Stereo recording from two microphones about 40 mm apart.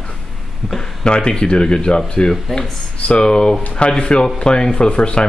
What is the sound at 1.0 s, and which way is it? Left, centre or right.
Speech, left.